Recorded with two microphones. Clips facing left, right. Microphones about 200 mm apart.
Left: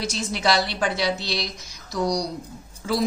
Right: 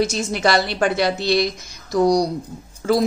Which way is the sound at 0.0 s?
50° right (ahead or behind).